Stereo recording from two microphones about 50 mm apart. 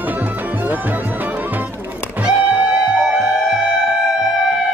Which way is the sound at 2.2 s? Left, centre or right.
Right.